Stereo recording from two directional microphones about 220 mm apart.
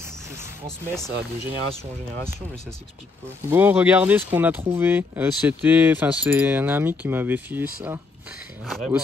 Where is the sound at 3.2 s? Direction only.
10° right (ahead or behind).